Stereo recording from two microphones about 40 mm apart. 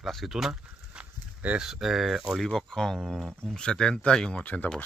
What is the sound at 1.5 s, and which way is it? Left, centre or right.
Speech, centre.